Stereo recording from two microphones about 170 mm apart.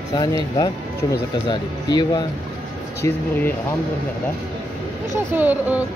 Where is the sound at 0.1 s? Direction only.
25° left (ahead or behind).